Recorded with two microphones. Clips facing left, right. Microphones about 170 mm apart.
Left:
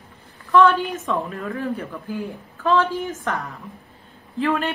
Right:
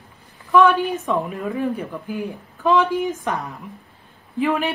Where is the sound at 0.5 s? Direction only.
15° right (ahead or behind).